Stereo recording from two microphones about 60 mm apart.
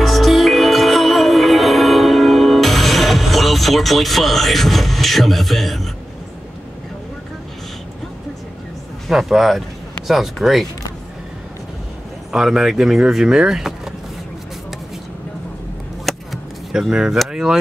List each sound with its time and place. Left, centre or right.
0.0 s music: centre
9.1 s speech: centre
12.3 s speech: centre
16.1 s a sound: centre
16.9 s speech: centre
17.3 s a sound: centre